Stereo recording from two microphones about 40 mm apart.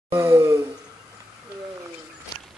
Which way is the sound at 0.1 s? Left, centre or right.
Right.